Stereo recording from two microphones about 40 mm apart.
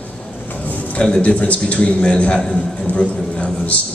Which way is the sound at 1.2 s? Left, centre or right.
Left.